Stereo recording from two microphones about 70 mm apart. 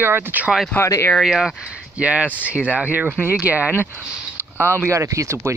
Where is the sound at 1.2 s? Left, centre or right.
Centre.